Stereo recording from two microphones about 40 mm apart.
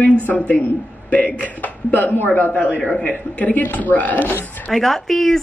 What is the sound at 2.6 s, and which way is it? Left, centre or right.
Speech, left.